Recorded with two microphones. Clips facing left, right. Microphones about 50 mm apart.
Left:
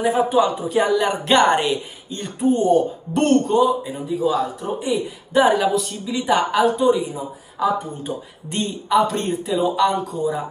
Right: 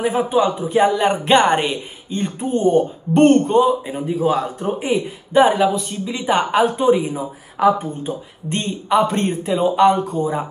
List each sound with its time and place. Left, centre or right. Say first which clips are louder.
0.0 s speech: even; right
4.1 s speech: right 1 dB; right
5.5 s speech: right 1 dB; centre
6.6 s speech: right 1 dB; right
7.6 s speech: right 5 dB; right
8.6 s speech: right 1 dB; right